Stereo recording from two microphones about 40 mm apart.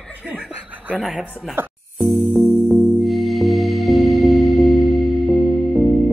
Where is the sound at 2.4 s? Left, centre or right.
Centre.